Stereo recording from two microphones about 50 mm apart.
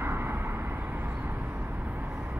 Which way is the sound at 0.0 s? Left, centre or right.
Right.